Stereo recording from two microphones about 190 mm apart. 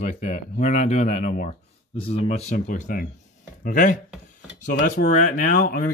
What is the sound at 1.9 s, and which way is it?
Speech, 30° left (ahead or behind).